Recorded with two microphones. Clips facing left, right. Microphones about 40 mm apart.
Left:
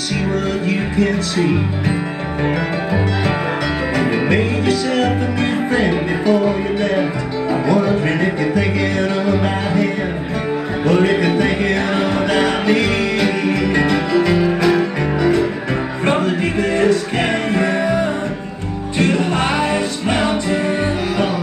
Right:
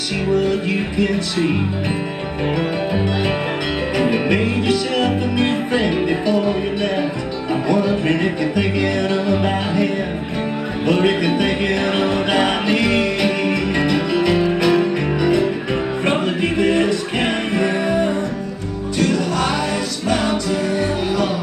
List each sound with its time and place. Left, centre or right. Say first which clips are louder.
5.8 s music: left 1 dB; left
7.6 s music: left 1 dB; left
9.4 s music: left 1 dB; left
10.9 s music: left 2 dB; left
12.1 s music: left 1 dB; right
12.8 s music: even; left
14.2 s music: left 1 dB; left
16.8 s music: left 3 dB; left
18.9 s music: left 2 dB; left